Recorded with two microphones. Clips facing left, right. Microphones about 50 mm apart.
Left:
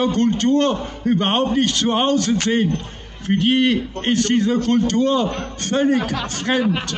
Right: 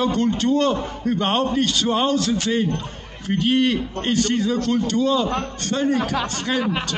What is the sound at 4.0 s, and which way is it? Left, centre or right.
Speech, left.